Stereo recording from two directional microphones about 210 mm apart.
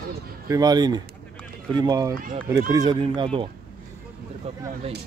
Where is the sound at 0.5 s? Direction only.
20° right (ahead or behind).